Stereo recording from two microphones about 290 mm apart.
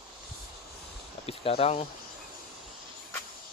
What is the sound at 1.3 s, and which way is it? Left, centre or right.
Speech, centre.